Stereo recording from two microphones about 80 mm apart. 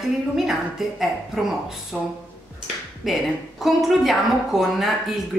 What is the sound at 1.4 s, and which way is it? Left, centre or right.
Speech, centre.